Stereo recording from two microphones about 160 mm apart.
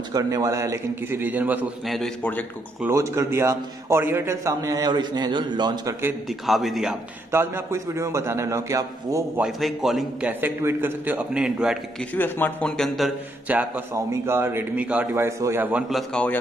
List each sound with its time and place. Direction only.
0.1 s a man's voice: 20° right (ahead or behind)
1.9 s a man's voice: 5° left (ahead or behind)
2.8 s a man's voice: 15° right (ahead or behind)
6.2 s a man's voice: centre (ahead or behind)
7.2 s a man's voice: 15° right (ahead or behind)
9.4 s a man's voice: centre (ahead or behind)
10.4 s a man's voice: 15° right (ahead or behind)
12.1 s a man's voice: 10° left (ahead or behind); by 15.8 s 15° right (ahead or behind)
15.9 s a man's voice: 5° left (ahead or behind)